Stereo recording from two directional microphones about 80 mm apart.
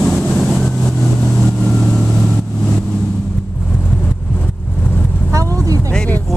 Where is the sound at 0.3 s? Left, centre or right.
Centre.